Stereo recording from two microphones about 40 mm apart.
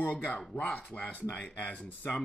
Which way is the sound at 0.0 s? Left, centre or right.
Left.